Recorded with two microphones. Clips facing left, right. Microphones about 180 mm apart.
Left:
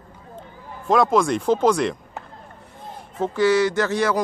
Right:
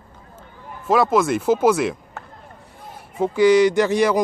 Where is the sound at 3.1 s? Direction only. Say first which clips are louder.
Right 4 dB; 10° right (ahead or behind).